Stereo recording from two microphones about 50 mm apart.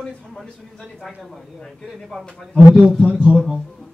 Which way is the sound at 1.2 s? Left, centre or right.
Centre.